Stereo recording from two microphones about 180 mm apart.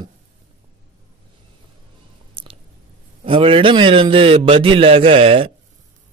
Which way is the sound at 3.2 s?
30° right (ahead or behind).